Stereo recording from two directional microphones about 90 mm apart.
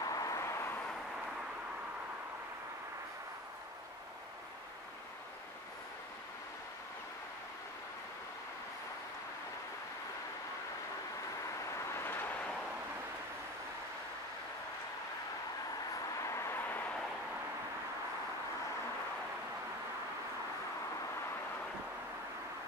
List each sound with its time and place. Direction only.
0.0 s vehicle: 40° left (ahead or behind)
11.6 s vehicle: 35° left (ahead or behind); by 12.5 s 15° left (ahead or behind)
15.9 s vehicle: 40° left (ahead or behind); by 16.9 s 20° left (ahead or behind)